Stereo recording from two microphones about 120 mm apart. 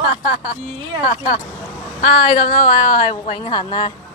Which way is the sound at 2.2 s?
40° left (ahead or behind).